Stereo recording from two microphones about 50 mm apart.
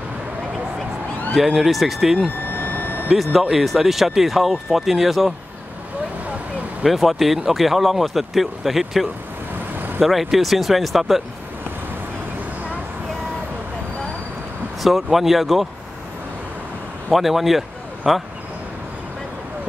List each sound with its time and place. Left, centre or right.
1.3 s speech: centre
2.5 s a sound: left
3.3 s speech: centre
6.8 s speech: centre
10.0 s speech: centre
14.8 s speech: centre
17.1 s speech: centre